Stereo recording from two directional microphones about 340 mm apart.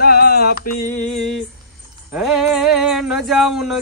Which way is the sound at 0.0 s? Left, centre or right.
Left.